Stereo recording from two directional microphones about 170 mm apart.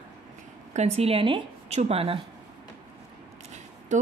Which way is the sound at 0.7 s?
40° right (ahead or behind).